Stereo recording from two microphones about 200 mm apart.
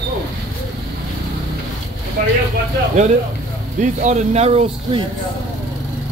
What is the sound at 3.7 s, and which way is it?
Speech, 40° right (ahead or behind).